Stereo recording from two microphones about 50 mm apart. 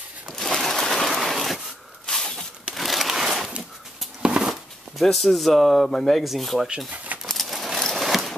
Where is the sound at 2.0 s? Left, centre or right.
Centre.